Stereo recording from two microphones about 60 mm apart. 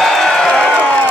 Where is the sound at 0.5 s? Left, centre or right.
Centre.